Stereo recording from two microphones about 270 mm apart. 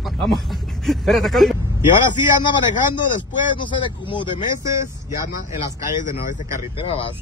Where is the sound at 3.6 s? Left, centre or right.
Centre.